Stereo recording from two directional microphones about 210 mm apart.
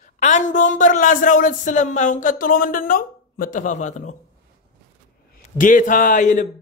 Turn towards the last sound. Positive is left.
turn(degrees=35)  # may be behind; listen again after turning